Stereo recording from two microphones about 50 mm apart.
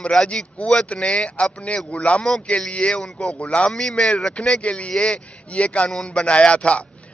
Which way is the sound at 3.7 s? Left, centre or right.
Centre.